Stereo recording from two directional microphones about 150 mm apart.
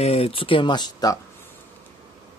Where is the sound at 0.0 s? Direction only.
45° left (ahead or behind); by 1.2 s 25° left (ahead or behind).